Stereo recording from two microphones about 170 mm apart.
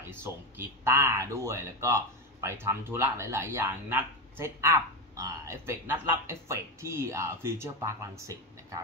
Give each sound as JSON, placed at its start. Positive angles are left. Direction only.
{"t": 0.1, "sound": "speech", "side_deg": -15}